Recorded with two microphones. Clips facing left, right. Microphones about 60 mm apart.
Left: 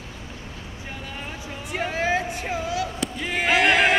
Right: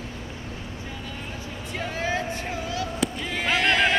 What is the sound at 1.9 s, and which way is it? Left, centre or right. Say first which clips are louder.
Vehicle: left 4 dB; centre.